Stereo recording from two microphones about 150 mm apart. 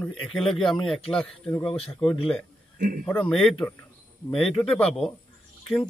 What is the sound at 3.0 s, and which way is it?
A man's voice, 10° left (ahead or behind).